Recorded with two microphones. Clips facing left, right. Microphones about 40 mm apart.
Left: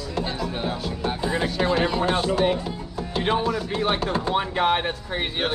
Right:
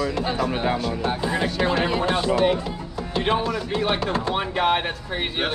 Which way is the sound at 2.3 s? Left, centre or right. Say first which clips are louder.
Right 4 dB; right.